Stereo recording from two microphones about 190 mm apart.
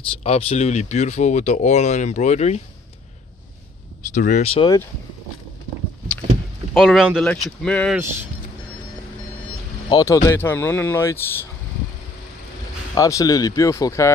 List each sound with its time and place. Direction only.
0.2 s speech: 30° left (ahead or behind)
4.1 s speech: 40° left (ahead or behind)
6.7 s speech: centre (ahead or behind)
7.9 s speech: 10° right (ahead or behind)
9.8 s speech: 20° left (ahead or behind)
12.9 s speech: 20° left (ahead or behind)